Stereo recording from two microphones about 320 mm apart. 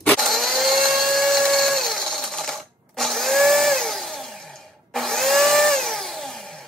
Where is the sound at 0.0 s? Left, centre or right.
Centre.